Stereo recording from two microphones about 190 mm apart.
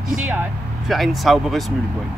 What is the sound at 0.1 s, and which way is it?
Speech, 5° right (ahead or behind).